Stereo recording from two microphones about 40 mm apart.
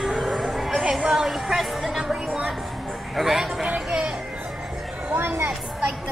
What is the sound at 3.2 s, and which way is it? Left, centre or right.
Speech, centre.